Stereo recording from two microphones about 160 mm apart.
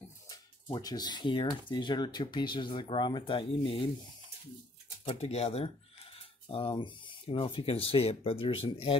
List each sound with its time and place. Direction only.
0.3 s speech: 25° left (ahead or behind)
5.0 s speech: 40° left (ahead or behind)